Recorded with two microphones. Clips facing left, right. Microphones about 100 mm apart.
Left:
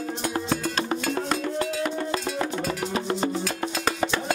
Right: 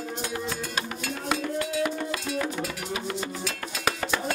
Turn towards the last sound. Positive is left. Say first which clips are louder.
# left 6 dB
turn(degrees=35)  # may be behind; listen again after turning